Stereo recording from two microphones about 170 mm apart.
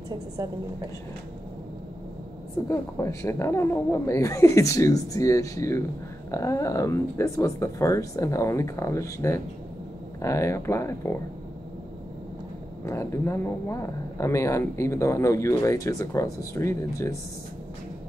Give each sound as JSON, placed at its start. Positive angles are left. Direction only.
{"t": 0.4, "sound": "a woman's voice", "side_deg": -20}
{"t": 2.7, "sound": "speech", "side_deg": 15}
{"t": 12.8, "sound": "speech", "side_deg": 15}